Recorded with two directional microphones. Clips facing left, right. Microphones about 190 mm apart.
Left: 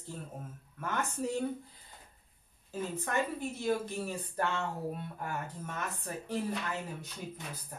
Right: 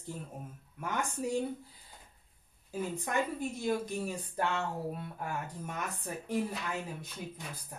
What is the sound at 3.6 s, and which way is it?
Speech, 15° right (ahead or behind).